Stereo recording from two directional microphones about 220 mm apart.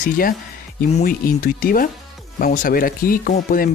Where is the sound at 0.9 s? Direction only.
40° left (ahead or behind).